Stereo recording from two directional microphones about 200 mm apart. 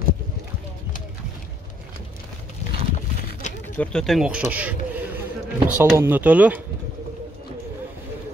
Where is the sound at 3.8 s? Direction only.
5° left (ahead or behind).